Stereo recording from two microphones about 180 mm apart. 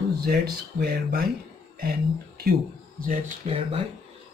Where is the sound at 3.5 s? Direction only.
30° right (ahead or behind).